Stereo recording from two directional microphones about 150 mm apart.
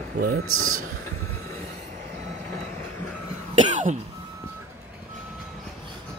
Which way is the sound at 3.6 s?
55° right (ahead or behind).